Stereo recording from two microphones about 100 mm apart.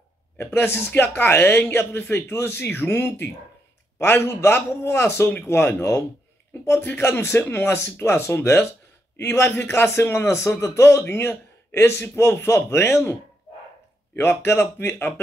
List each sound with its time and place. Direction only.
0.4 s a man's voice: 20° left (ahead or behind)
14.1 s a man's voice: 25° left (ahead or behind)